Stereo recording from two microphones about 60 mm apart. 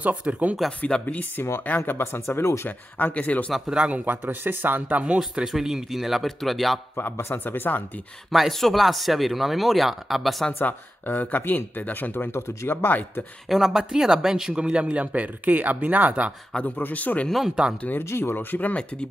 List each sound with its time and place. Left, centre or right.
0.0 s speech: right
0.7 s speech: centre
1.0 s speech: left
3.0 s speech: left
3.6 s speech: centre
3.9 s speech: right; by 6.8 s centre
7.0 s speech: left
8.3 s speech: centre
10.6 s speech: left
13.5 s speech: centre; by 16.3 s right
16.5 s speech: left
17.8 s speech: left